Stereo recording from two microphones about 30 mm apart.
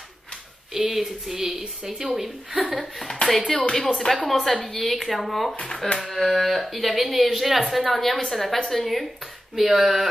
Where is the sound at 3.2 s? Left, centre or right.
Left.